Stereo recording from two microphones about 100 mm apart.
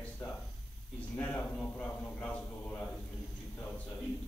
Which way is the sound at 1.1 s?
15° left (ahead or behind).